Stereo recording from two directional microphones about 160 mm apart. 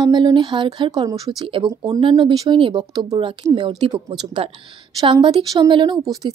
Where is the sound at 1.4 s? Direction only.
35° right (ahead or behind).